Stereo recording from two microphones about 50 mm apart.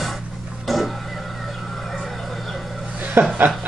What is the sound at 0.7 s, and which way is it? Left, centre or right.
Vehicle, centre.